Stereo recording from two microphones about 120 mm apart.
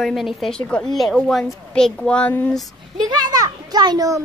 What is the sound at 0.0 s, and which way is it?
A woman's voice, centre (ahead or behind).